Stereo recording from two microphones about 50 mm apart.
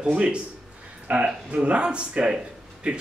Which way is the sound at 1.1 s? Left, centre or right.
Right.